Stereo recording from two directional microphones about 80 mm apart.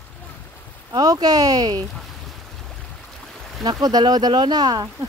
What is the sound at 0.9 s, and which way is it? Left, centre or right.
Speech, right.